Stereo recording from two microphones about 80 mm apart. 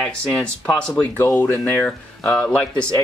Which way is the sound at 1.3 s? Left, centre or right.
Left.